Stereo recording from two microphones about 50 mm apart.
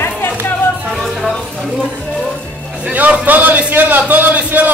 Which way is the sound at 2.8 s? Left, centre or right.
Right.